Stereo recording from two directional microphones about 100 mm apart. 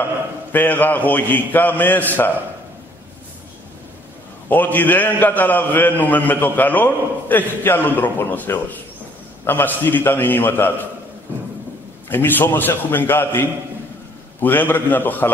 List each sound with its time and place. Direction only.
0.5 s a man's voice: 20° left (ahead or behind)
4.5 s a man's voice: 15° left (ahead or behind)
12.1 s a man's voice: 20° left (ahead or behind)